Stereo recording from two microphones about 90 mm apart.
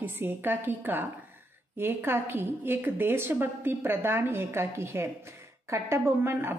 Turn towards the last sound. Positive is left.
turn(degrees=-25)  # may be behind; listen again after turning